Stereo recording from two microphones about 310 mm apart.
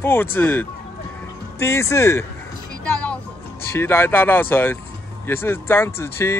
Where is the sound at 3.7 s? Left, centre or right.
Centre.